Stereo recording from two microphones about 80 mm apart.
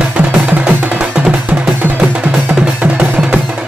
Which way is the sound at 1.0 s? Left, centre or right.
Centre.